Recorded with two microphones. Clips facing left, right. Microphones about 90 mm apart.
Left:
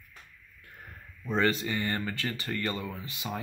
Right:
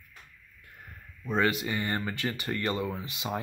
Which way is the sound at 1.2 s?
10° right (ahead or behind).